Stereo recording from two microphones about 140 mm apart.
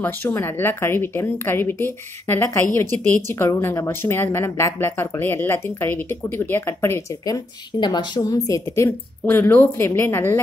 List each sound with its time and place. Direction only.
0.0 s a woman's voice: 15° left (ahead or behind)
7.8 s a woman's voice: 30° left (ahead or behind)